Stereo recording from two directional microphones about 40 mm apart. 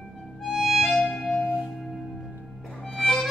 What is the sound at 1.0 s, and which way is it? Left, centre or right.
Music, centre.